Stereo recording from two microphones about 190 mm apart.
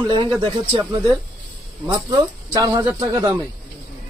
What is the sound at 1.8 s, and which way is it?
Speech, 15° right (ahead or behind).